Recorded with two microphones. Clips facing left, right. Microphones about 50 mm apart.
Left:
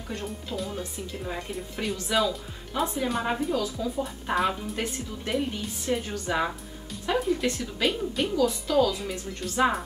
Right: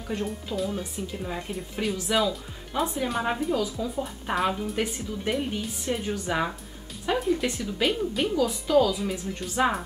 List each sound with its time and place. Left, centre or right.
0.2 s speech: centre
6.0 s speech: centre
7.1 s music: centre
7.6 s speech: centre